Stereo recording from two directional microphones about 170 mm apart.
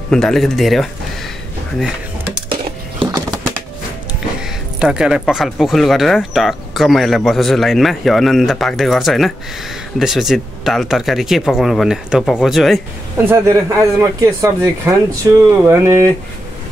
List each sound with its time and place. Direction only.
0.1 s speech: centre (ahead or behind)
2.5 s a sound: 25° right (ahead or behind)
4.4 s speech: 5° right (ahead or behind)
13.2 s speech: 15° right (ahead or behind)